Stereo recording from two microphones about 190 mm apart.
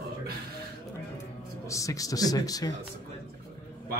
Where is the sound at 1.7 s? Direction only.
15° left (ahead or behind).